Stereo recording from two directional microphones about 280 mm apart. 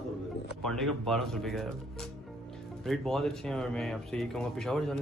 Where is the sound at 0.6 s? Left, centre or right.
Centre.